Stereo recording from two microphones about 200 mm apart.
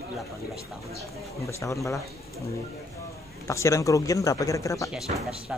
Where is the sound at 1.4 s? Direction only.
15° left (ahead or behind).